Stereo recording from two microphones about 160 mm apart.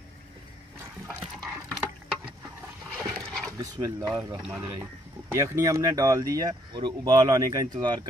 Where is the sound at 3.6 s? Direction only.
20° right (ahead or behind).